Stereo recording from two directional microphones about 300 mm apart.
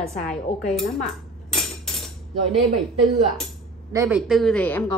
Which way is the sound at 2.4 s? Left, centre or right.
Centre.